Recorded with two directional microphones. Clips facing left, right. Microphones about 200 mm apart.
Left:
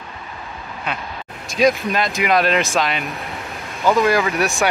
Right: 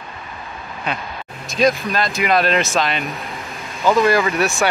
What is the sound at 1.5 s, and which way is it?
Speech, 15° left (ahead or behind).